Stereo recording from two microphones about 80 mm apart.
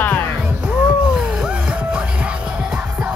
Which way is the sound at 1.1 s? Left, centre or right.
Centre.